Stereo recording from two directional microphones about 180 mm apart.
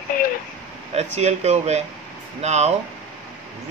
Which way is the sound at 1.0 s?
40° right (ahead or behind).